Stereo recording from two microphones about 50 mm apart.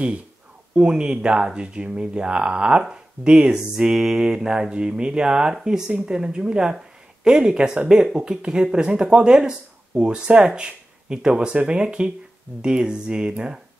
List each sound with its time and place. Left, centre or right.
0.7 s speech: centre